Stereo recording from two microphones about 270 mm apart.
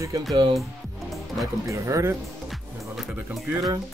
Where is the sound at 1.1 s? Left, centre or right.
Centre.